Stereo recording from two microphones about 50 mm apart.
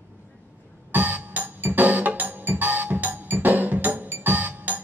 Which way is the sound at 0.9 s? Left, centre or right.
Right.